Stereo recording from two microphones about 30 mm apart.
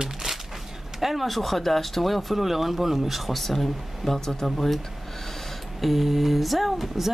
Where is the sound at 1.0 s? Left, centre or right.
Centre.